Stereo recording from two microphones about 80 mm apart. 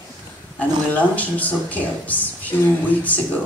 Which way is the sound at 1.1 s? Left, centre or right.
Centre.